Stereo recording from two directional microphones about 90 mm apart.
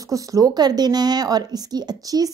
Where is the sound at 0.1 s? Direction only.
40° right (ahead or behind).